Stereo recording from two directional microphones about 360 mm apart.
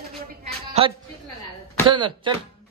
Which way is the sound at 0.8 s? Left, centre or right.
Centre.